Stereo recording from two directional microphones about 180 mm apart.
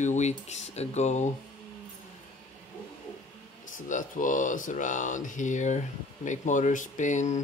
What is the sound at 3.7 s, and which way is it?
Speech, 45° left (ahead or behind).